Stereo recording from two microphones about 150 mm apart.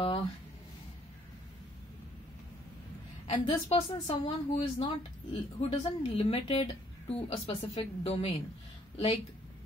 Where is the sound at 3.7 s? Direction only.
45° left (ahead or behind).